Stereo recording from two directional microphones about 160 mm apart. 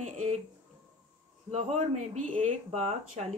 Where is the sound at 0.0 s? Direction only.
45° right (ahead or behind).